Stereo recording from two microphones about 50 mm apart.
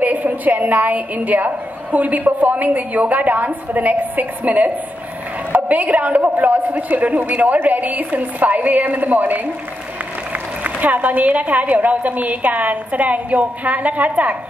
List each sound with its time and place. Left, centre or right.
0.0 s a woman's voice: right
10.6 s a woman's voice: right